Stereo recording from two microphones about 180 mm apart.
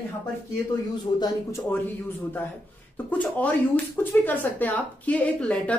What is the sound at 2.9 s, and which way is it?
A woman's voice, 10° left (ahead or behind).